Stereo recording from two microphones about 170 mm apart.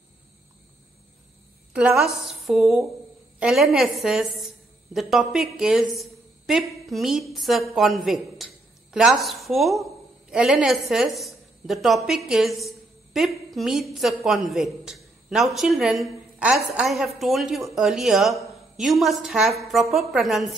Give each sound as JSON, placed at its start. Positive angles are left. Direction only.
{"t": 1.7, "sound": "a woman's voice", "side_deg": -5}